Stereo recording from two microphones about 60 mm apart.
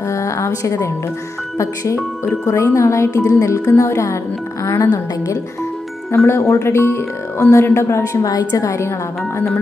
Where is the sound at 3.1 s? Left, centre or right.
Left.